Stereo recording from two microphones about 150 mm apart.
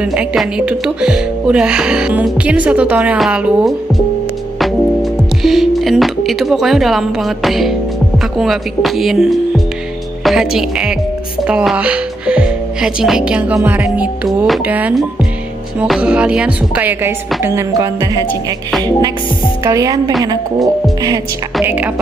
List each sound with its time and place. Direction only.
0.0 s music: 5° right (ahead or behind)
8.4 s speech: centre (ahead or behind)
13.6 s music: 10° right (ahead or behind)
21.6 s music: 10° right (ahead or behind)